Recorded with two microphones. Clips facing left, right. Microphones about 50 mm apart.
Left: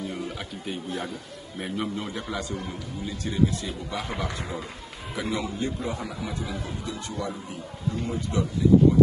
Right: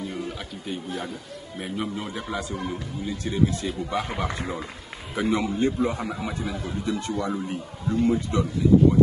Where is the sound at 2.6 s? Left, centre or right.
Right.